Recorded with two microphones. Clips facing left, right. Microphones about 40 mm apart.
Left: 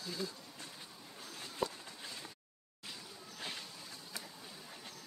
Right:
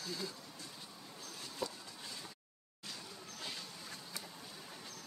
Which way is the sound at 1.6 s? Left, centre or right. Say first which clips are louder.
Left 4 dB; left.